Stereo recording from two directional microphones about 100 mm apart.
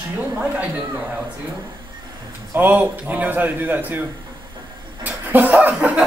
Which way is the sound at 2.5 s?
20° right (ahead or behind).